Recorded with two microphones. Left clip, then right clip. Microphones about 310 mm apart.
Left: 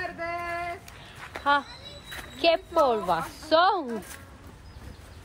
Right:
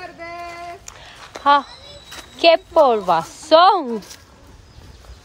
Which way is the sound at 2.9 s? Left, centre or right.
Right.